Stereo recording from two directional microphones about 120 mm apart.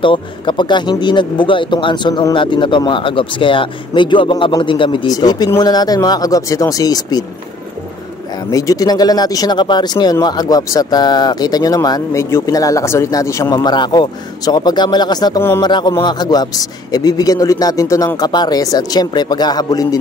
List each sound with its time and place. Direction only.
0.0 s a man's voice: 45° left (ahead or behind)
8.5 s a man's voice: 30° left (ahead or behind)
13.7 s a man's voice: 35° left (ahead or behind)